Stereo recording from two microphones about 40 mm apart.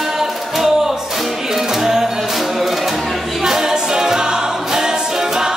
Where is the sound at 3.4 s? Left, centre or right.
Centre.